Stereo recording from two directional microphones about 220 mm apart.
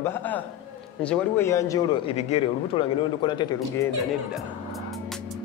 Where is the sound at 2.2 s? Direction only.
30° left (ahead or behind).